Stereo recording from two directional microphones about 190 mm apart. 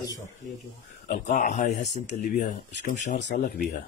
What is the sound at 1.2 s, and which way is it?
A man's voice, 40° left (ahead or behind).